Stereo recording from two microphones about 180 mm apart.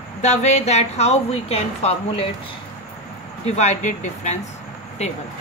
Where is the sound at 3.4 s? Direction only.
40° left (ahead or behind).